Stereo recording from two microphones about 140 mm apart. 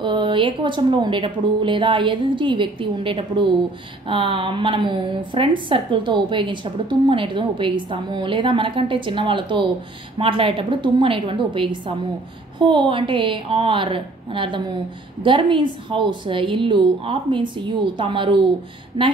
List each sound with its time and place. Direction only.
0.0 s a woman's voice: 35° right (ahead or behind)